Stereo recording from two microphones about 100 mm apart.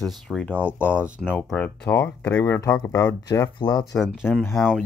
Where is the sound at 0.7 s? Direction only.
20° left (ahead or behind).